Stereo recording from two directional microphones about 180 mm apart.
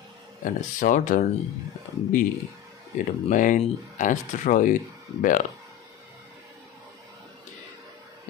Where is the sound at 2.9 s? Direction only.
45° left (ahead or behind).